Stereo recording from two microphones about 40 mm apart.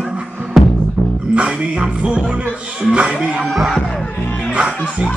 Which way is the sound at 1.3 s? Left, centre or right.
Right.